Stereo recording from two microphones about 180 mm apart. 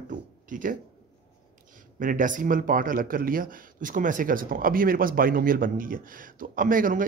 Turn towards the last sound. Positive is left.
turn(degrees=-50)  # may be behind; listen again after turning